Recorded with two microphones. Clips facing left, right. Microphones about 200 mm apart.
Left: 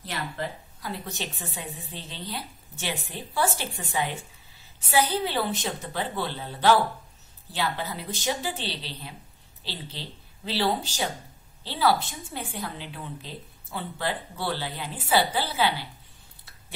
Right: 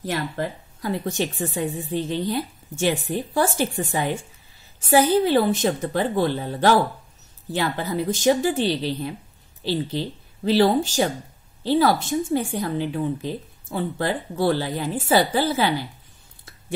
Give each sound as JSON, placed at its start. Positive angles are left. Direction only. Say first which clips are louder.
{"t": 0.0, "sound": "speech", "louder": "right 7 dB", "side_deg": -50}